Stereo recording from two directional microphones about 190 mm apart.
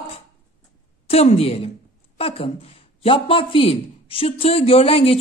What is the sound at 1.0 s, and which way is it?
A man's voice, 30° left (ahead or behind).